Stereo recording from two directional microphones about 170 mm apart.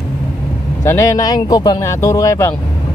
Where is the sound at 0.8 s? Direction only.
15° left (ahead or behind).